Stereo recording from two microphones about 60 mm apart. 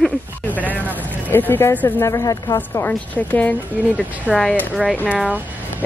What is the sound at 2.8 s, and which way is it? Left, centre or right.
Speech, left.